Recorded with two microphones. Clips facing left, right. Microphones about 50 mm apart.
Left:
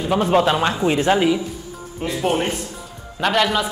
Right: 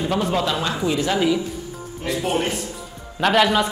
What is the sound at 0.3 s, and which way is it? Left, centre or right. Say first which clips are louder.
Speech: left 5 dB; left.